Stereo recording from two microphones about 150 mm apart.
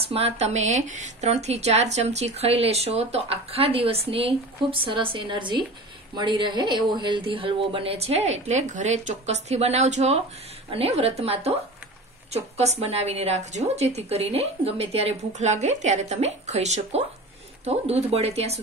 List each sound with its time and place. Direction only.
0.0 s speech: 40° right (ahead or behind)
12.5 s speech: 45° right (ahead or behind)